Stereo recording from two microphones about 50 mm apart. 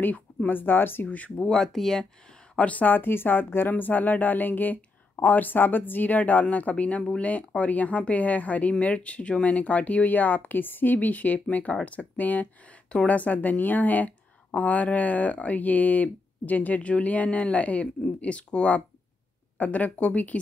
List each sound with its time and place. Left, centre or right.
0.5 s speech: left
1.0 s speech: left
1.5 s speech: centre
2.6 s a woman's voice: left